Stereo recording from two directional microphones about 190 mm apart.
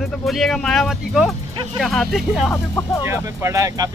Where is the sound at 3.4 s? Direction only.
15° right (ahead or behind).